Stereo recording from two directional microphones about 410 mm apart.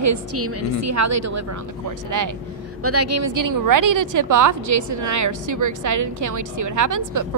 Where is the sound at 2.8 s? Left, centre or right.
Right.